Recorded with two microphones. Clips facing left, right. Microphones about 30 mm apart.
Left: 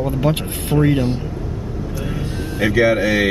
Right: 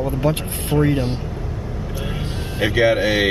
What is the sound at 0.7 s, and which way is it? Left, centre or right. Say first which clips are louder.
Speech: left 2 dB; centre.